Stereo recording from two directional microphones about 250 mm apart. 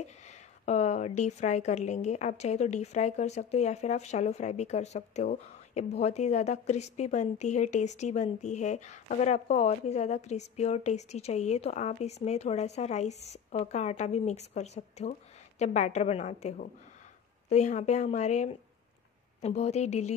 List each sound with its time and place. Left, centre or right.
0.0 s speech: left